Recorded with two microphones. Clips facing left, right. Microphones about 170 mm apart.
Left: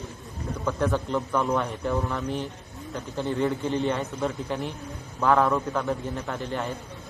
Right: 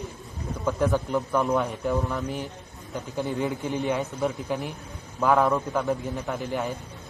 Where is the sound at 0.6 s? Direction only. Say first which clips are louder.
Right 2 dB; 15° right (ahead or behind).